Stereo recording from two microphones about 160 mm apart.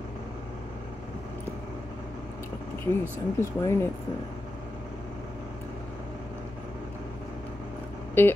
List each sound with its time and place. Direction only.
2.8 s speech: 15° left (ahead or behind)
8.2 s speech: 15° left (ahead or behind)